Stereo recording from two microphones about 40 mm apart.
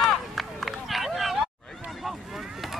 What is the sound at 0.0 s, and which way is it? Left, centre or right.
Run, centre.